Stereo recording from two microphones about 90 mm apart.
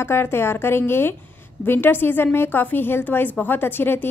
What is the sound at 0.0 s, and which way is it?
A woman's voice, 25° left (ahead or behind).